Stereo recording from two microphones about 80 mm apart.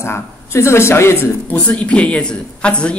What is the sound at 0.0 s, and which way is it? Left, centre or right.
Speech, left.